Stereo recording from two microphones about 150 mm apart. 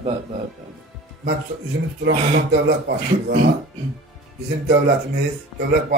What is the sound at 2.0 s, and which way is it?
Speech, 90° right.